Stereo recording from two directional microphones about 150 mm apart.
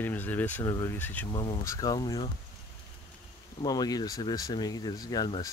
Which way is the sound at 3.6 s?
25° left (ahead or behind).